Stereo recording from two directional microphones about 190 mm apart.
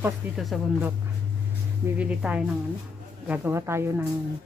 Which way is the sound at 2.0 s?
5° right (ahead or behind).